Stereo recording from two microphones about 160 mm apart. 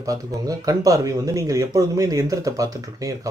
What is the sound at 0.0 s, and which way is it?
Speech, 20° right (ahead or behind).